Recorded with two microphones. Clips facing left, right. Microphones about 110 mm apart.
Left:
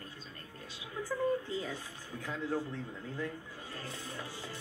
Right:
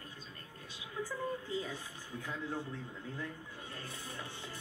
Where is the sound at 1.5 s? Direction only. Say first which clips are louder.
Left 1 dB; 35° left (ahead or behind).